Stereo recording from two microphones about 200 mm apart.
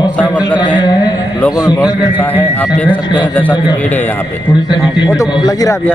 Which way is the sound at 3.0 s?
25° left (ahead or behind).